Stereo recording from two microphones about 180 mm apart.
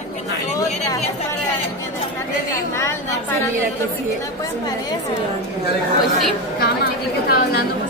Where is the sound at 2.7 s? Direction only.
15° left (ahead or behind).